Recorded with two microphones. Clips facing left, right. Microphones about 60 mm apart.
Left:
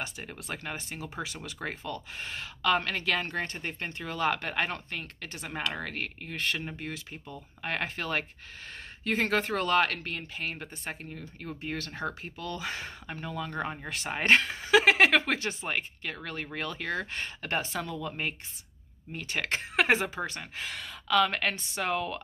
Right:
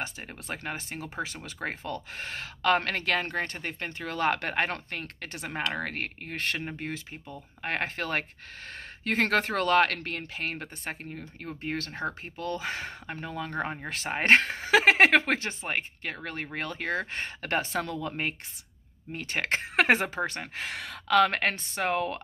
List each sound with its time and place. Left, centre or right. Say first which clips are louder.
0.0 s speech: right 1 dB; right
6.6 s speech: right 2 dB; right
9.0 s speech: right 2 dB; right